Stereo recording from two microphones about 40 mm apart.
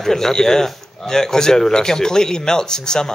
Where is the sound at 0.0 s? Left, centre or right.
Centre.